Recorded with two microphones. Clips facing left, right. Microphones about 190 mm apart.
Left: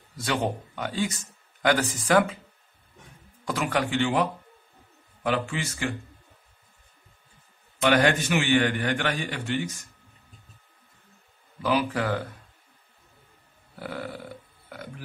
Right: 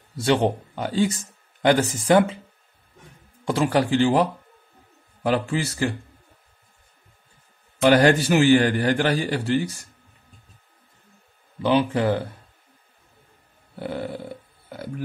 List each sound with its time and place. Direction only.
0.2 s speech: 30° right (ahead or behind)
3.4 s a man's voice: 30° right (ahead or behind)
7.8 s a man's voice: 35° right (ahead or behind)
11.6 s speech: 25° right (ahead or behind)
13.7 s a sound: 25° right (ahead or behind)